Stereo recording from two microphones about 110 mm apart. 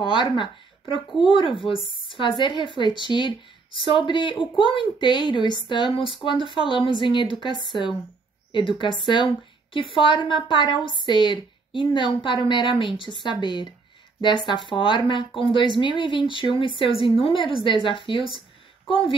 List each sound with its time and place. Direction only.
0.0 s a woman's voice: 45° left (ahead or behind)